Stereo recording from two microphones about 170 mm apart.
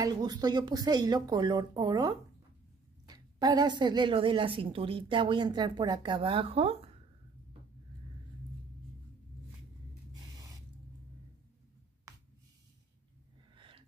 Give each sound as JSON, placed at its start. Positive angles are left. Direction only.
{"t": 0.0, "sound": "a woman's voice", "side_deg": -25}
{"t": 10.3, "sound": "spray", "side_deg": -20}
{"t": 13.6, "sound": "gasp", "side_deg": -30}